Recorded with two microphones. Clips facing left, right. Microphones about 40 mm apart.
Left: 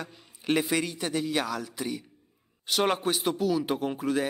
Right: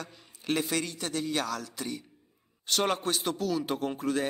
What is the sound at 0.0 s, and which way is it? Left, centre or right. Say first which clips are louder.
A man's voice: left 3 dB; centre.